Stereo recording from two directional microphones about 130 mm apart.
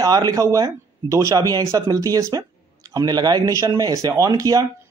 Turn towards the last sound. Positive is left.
turn(degrees=-25)  # may be behind; listen again after turning